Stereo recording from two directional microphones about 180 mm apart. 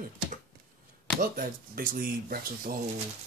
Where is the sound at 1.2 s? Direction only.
50° right (ahead or behind).